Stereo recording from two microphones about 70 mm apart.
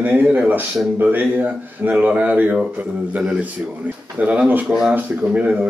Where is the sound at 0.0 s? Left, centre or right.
Right.